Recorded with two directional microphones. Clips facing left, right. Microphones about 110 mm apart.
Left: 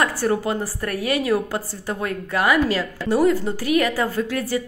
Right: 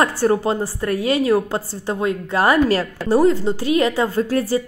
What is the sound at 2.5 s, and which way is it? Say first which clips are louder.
Speech: right 3 dB; 40° right (ahead or behind).